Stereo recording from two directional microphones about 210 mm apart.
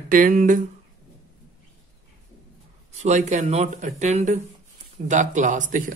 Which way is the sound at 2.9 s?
30° right (ahead or behind).